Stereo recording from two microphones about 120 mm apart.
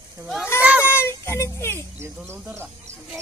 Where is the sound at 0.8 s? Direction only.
20° left (ahead or behind).